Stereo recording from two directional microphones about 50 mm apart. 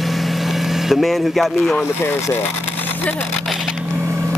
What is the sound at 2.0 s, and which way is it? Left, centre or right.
Speech, left.